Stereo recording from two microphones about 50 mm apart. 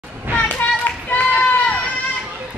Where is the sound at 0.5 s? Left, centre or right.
Left.